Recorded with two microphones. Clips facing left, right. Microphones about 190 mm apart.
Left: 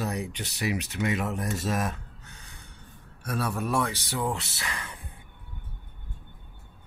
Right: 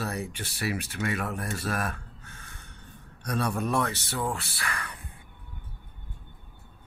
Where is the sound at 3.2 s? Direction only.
5° left (ahead or behind); by 5.0 s 25° left (ahead or behind).